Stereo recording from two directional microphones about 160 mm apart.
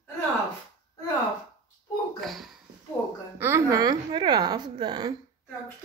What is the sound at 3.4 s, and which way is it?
A woman's voice, 15° right (ahead or behind).